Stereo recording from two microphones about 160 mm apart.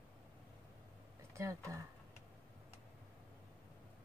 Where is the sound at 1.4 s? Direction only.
20° right (ahead or behind).